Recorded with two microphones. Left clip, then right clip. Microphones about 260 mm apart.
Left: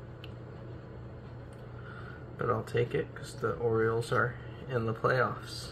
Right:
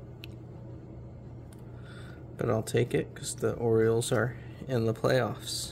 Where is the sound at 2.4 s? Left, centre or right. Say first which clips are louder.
Right 2 dB; right.